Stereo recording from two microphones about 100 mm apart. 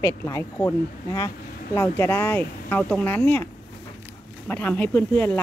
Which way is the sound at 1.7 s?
20° left (ahead or behind).